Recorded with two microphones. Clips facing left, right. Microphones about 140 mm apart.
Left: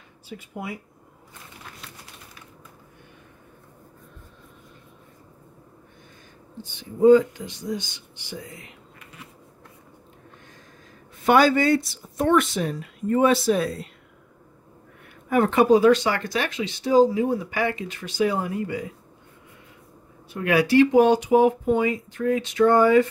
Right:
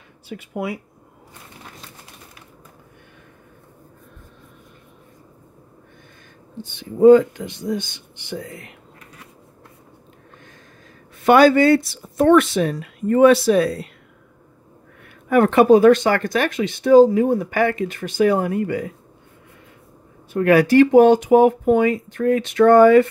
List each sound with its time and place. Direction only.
0.3 s speech: 85° right
6.6 s speech: 65° right (ahead or behind)
11.2 s speech: 70° right (ahead or behind)
15.2 s speech: 65° right (ahead or behind)
20.3 s speech: 50° right (ahead or behind)